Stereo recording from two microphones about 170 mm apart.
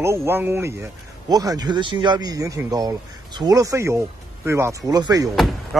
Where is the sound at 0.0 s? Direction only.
15° right (ahead or behind).